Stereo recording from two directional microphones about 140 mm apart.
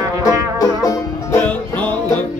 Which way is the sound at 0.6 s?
25° left (ahead or behind).